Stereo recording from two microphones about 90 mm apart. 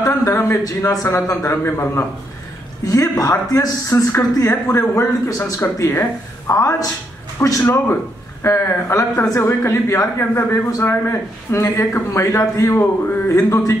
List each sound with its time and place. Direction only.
0.0 s speech: 30° left (ahead or behind)